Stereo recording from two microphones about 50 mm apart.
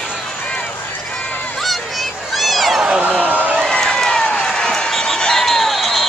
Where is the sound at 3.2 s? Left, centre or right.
Right.